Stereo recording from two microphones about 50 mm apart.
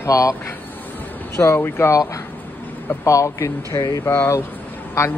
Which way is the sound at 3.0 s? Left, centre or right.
Left.